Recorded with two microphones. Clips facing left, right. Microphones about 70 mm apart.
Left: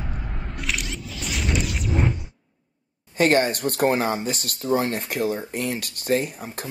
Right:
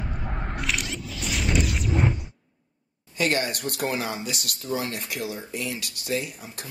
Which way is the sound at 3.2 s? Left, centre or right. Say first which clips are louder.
Left 6 dB; left.